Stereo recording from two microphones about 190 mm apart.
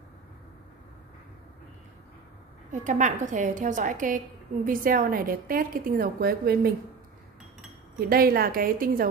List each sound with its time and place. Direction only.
2.7 s a woman's voice: 40° right (ahead or behind)
8.1 s a woman's voice: 50° right (ahead or behind)